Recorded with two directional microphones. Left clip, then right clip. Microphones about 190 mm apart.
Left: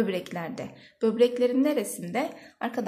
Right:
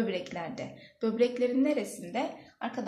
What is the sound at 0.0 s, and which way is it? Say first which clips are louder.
A woman's voice: left 4 dB; 40° left (ahead or behind).